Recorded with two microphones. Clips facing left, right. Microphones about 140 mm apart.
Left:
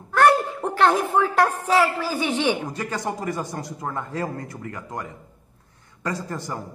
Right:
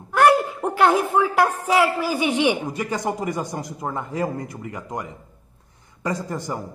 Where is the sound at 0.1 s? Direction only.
10° right (ahead or behind).